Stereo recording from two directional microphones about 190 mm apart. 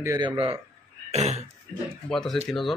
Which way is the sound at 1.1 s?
35° right (ahead or behind).